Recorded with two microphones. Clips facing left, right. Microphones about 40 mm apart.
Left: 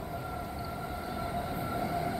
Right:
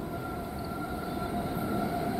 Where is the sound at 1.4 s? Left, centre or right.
Left.